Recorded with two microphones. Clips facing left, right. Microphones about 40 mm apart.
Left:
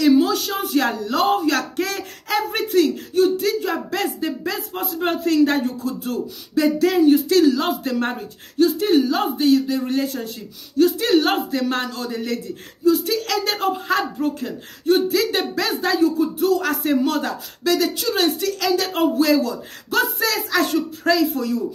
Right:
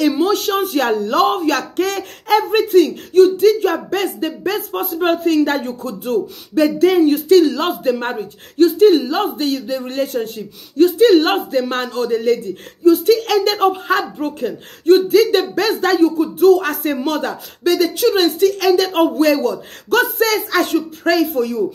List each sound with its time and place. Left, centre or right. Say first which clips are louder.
0.0 s speech: right 1 dB; right
7.9 s speech: right 3 dB; centre
8.5 s speech: right 6 dB; right
15.7 s speech: right 4 dB; right